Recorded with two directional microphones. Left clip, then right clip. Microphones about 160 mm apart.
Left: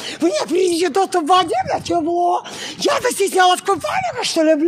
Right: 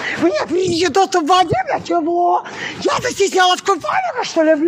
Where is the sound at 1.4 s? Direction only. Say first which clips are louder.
Right 2 dB; 25° left (ahead or behind).